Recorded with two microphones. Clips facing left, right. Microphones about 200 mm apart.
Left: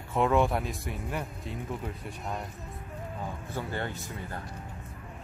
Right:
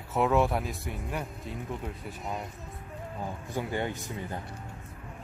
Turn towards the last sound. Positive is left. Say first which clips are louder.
# right 2 dB
turn(degrees=-15)  # may be behind; listen again after turning